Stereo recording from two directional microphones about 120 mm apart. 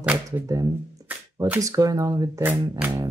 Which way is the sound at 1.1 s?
15° right (ahead or behind).